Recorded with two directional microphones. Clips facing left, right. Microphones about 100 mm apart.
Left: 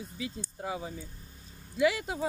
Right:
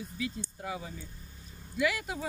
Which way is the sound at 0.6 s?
25° left (ahead or behind).